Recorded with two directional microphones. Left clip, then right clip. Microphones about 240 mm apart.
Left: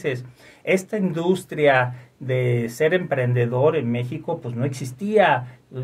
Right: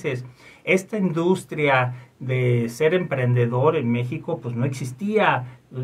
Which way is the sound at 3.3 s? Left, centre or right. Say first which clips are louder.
Even; centre.